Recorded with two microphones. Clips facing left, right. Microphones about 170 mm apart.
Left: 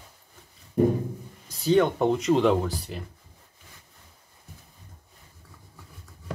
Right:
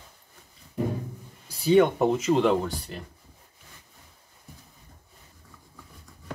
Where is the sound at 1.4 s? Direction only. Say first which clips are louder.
Right 2 dB; 5° right (ahead or behind).